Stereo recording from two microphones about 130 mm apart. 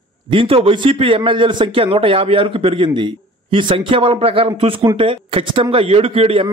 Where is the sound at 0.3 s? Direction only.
45° right (ahead or behind).